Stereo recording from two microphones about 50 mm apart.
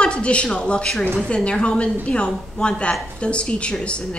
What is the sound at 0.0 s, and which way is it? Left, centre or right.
A woman's voice, left.